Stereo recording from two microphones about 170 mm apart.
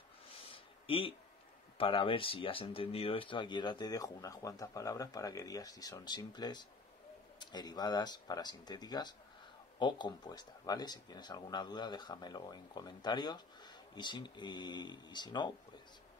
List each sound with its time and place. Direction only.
0.8 s speech: 35° left (ahead or behind)